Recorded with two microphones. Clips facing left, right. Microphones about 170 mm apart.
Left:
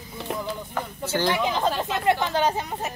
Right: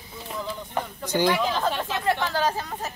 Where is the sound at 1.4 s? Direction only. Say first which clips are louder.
Left 1 dB; 20° left (ahead or behind).